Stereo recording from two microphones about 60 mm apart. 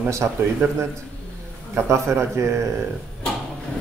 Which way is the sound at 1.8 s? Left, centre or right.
Right.